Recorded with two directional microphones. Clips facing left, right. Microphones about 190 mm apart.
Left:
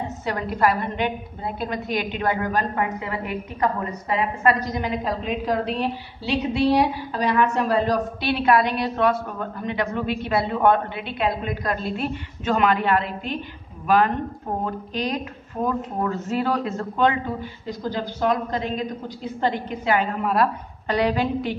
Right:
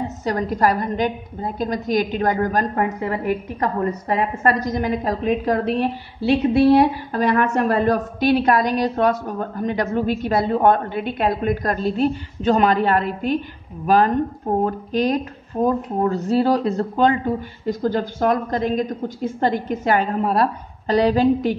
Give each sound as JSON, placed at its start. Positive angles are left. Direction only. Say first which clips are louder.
{"t": 0.2, "sound": "a woman's voice", "louder": "right 3 dB", "side_deg": -40}
{"t": 14.6, "sound": "a woman's voice", "louder": "right 7 dB", "side_deg": -45}
{"t": 15.6, "sound": "speech", "louder": "right 5 dB", "side_deg": -35}
{"t": 17.6, "sound": "a woman's voice", "louder": "right 7 dB", "side_deg": -50}